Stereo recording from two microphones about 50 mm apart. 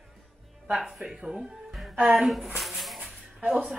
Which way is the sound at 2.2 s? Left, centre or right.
Centre.